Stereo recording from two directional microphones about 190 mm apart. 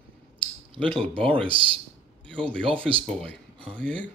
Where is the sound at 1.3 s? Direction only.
25° right (ahead or behind).